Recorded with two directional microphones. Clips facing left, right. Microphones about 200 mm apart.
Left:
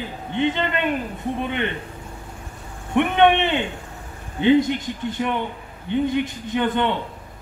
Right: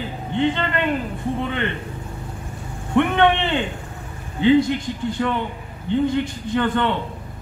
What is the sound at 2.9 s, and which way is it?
A man's voice, 20° left (ahead or behind).